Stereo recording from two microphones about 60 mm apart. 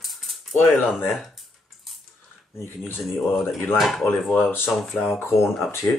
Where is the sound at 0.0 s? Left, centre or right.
Centre.